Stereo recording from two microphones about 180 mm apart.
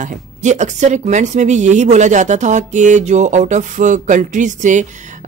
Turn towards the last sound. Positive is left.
turn(degrees=-45)  # may be behind; listen again after turning